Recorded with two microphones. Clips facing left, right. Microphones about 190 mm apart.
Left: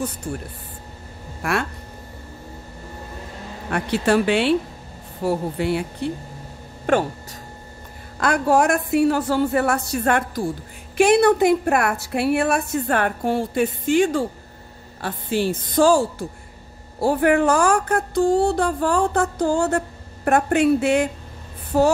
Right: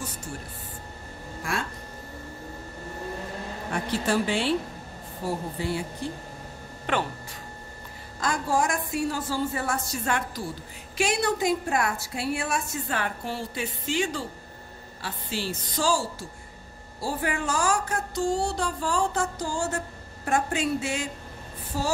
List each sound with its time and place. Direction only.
0.3 s a woman's voice: 60° left (ahead or behind)
1.4 s a sound: 70° left (ahead or behind)
3.7 s speech: 70° left (ahead or behind)
6.9 s speech: 45° left (ahead or behind)
8.2 s a woman's voice: 65° left (ahead or behind)